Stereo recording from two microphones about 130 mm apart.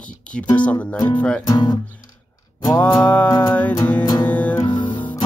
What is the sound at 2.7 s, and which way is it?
Speech, 10° left (ahead or behind).